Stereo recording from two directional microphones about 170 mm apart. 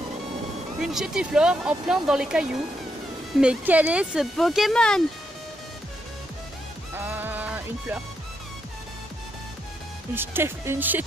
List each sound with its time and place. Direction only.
0.7 s speech: 5° right (ahead or behind)
7.0 s music: 10° right (ahead or behind)
10.1 s speech: 15° right (ahead or behind)